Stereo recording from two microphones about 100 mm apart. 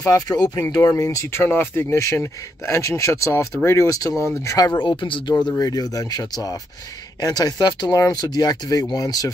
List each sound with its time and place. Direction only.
0.0 s speech: 40° left (ahead or behind)
4.8 s speech: 55° left (ahead or behind)
5.5 s speech: 40° left (ahead or behind)